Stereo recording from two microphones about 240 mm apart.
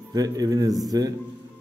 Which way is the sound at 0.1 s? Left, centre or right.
Centre.